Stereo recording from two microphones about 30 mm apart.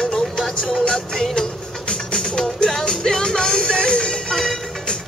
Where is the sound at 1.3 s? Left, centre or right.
Left.